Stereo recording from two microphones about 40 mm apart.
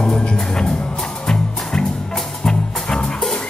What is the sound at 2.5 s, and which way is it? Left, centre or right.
Music, centre.